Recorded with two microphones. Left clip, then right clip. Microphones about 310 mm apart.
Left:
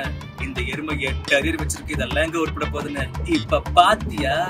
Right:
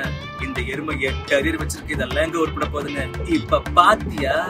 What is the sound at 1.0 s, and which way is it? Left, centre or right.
Speech, centre.